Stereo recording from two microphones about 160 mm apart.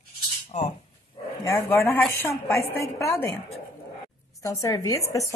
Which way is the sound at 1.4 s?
15° left (ahead or behind).